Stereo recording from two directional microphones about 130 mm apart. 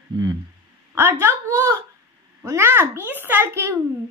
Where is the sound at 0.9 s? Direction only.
20° right (ahead or behind).